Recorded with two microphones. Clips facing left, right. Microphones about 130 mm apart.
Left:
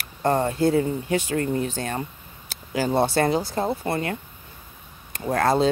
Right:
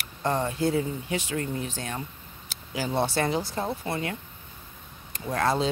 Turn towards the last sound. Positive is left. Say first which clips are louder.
# left 5 dB
turn(degrees=45)  # may be behind; listen again after turning